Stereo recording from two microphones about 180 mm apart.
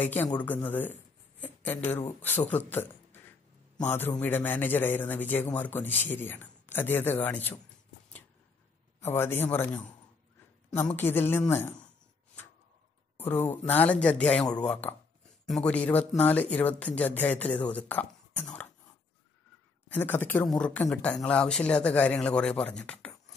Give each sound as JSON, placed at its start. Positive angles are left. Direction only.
{"t": 0.0, "sound": "a man's voice", "side_deg": 10}
{"t": 9.0, "sound": "speech", "side_deg": 10}
{"t": 13.2, "sound": "speech", "side_deg": 10}
{"t": 19.9, "sound": "speech", "side_deg": 10}